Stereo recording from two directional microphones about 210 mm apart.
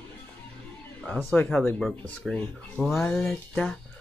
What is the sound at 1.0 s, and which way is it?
Speech, centre (ahead or behind).